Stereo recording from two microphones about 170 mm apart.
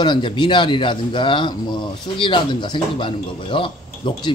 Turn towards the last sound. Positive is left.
turn(degrees=30)  # may be behind; listen again after turning